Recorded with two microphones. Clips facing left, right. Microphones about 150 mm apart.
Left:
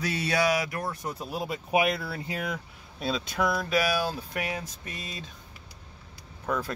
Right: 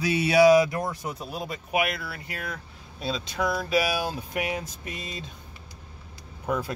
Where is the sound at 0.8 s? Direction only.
10° right (ahead or behind).